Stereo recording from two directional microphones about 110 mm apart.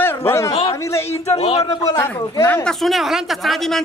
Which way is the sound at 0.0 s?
20° left (ahead or behind).